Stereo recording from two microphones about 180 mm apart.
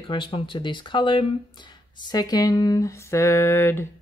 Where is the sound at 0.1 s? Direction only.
30° left (ahead or behind).